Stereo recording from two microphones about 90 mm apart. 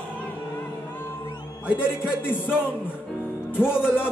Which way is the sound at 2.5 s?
20° left (ahead or behind).